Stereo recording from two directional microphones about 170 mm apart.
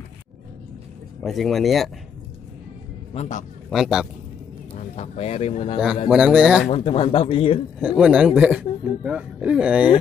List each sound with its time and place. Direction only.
1.2 s speech: centre (ahead or behind)
3.2 s a man's voice: 45° left (ahead or behind)
3.7 s speech: centre (ahead or behind)
4.7 s speech: 40° left (ahead or behind)
6.0 s speech: 5° right (ahead or behind)
6.7 s speech: 35° left (ahead or behind)
7.8 s speech: 5° right (ahead or behind)